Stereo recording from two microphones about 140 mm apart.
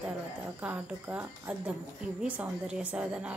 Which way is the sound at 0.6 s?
10° right (ahead or behind).